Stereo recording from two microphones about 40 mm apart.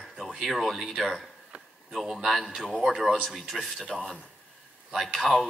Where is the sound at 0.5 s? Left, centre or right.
Centre.